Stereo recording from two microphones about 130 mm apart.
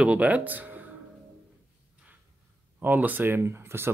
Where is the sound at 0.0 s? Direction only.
10° right (ahead or behind).